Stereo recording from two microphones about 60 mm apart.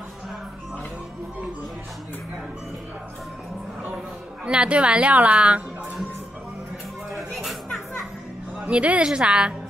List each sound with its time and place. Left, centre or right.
4.5 s a woman's voice: centre
7.1 s a sound: centre
8.6 s a woman's voice: centre